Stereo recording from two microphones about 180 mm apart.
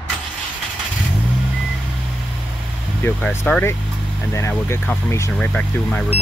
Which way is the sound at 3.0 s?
10° left (ahead or behind).